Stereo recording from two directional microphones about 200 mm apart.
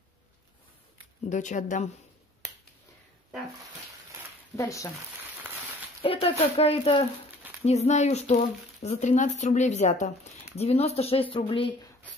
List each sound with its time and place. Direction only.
1.3 s speech: 40° left (ahead or behind)
4.6 s speech: 15° left (ahead or behind)
6.0 s speech: 30° left (ahead or behind)